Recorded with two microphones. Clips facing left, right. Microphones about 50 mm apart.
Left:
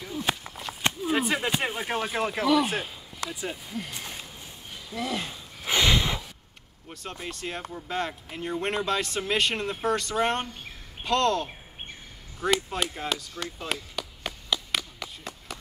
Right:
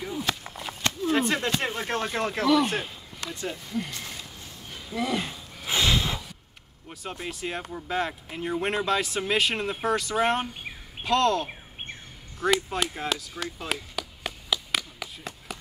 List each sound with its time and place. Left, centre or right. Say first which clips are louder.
0.3 s walk: left 2 dB; centre
1.0 s speech: right 3 dB; centre
3.9 s a sound: even; centre
4.9 s a sound: right 3 dB; centre
6.9 s speech: right 2 dB; centre
12.4 s chop: right 1 dB; centre